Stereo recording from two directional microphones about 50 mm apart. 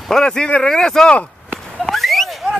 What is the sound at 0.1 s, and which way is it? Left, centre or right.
Speech, centre.